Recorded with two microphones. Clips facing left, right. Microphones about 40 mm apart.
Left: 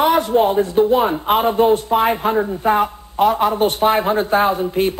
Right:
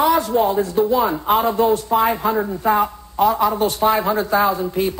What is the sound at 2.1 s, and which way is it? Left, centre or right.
Speech, left.